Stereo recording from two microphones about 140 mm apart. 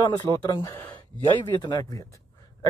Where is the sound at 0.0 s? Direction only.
30° left (ahead or behind).